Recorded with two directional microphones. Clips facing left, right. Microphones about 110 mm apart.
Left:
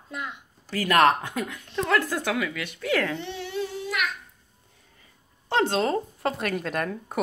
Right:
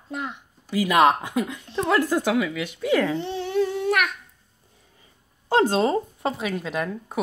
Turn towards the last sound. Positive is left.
turn(degrees=-5)  # may be behind; listen again after turning